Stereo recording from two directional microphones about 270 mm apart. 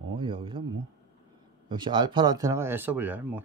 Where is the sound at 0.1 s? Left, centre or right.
Centre.